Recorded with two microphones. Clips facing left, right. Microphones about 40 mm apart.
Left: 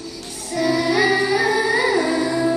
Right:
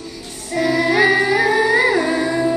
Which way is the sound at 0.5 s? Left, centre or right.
Right.